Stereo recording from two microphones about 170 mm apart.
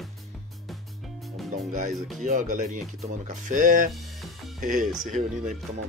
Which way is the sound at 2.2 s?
45° right (ahead or behind).